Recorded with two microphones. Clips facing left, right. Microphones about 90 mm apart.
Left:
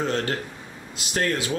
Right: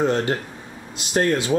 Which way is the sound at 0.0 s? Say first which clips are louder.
Right 5 dB; 20° right (ahead or behind).